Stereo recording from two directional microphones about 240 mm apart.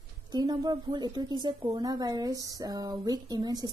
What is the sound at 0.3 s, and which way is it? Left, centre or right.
A woman's voice, centre.